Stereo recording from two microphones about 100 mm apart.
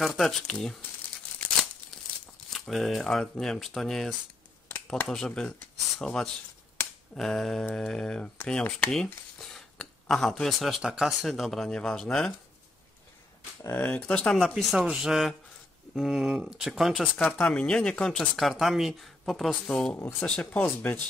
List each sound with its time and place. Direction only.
0.0 s speech: centre (ahead or behind)
2.5 s speech: centre (ahead or behind)
4.6 s a sound: 15° left (ahead or behind)
5.0 s speech: 5° left (ahead or behind)
13.7 s speech: 15° left (ahead or behind)
14.3 s speech: centre (ahead or behind)
16.9 s speech: 10° left (ahead or behind)
20.0 s speech: 25° left (ahead or behind)
20.2 s speech: 10° left (ahead or behind)
20.6 s speech: 20° left (ahead or behind)